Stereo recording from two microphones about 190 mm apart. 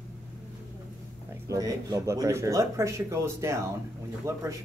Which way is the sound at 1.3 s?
15° right (ahead or behind).